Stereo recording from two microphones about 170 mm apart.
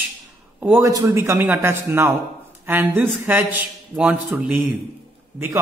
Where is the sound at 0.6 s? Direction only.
10° right (ahead or behind).